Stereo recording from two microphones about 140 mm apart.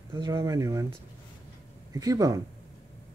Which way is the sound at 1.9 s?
25° right (ahead or behind).